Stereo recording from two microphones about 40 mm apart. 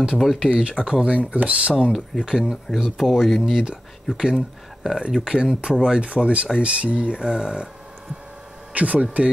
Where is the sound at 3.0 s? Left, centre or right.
Centre.